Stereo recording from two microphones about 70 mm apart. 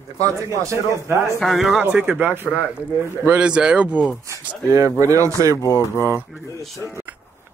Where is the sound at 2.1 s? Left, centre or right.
Right.